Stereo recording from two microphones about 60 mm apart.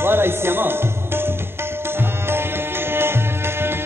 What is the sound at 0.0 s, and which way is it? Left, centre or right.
Music, right.